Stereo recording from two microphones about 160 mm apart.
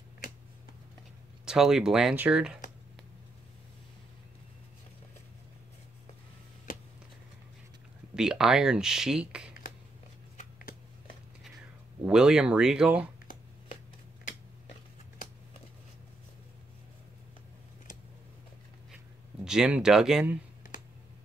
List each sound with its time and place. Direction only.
1.4 s speech: 5° right (ahead or behind)
8.2 s speech: 5° right (ahead or behind)
10.3 s a sound: 55° left (ahead or behind)
12.0 s speech: 5° right (ahead or behind)
19.4 s speech: 5° right (ahead or behind)